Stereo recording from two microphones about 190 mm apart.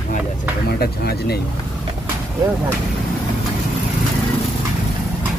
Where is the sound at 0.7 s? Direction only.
55° left (ahead or behind).